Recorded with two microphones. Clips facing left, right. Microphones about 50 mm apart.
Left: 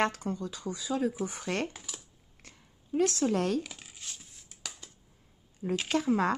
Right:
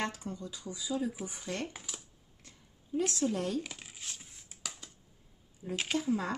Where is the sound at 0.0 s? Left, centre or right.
Left.